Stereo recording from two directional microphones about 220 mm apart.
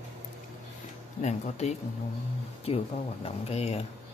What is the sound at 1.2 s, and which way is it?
Speech, 30° left (ahead or behind).